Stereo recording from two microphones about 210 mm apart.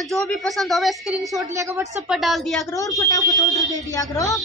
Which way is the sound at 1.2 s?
15° right (ahead or behind).